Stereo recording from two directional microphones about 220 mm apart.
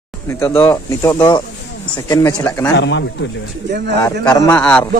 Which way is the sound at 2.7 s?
55° left (ahead or behind).